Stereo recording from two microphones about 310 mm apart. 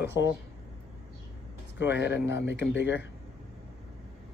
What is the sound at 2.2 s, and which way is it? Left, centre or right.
Speech, centre.